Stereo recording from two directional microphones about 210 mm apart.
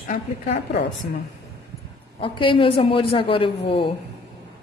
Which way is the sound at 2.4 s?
25° left (ahead or behind).